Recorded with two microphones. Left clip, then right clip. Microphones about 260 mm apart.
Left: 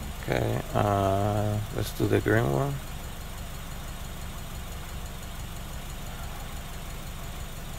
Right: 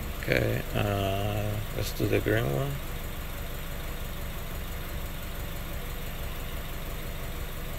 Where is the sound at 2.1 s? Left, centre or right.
Left.